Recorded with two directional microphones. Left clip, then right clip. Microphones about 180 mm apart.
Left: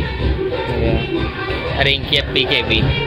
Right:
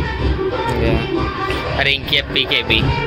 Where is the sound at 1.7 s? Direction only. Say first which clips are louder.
Left 1 dB; 10° left (ahead or behind).